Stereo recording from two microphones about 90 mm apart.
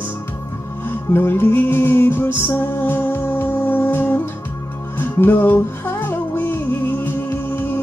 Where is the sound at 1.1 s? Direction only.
25° left (ahead or behind).